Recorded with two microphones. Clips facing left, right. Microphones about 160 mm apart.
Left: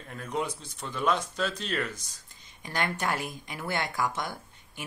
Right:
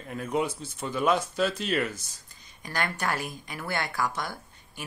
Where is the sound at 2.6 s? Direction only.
20° left (ahead or behind).